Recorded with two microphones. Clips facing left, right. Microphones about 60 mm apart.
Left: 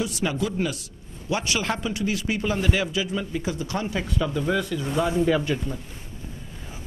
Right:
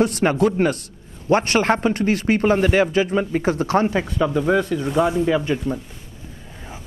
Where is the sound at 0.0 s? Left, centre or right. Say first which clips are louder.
Right 9 dB; right.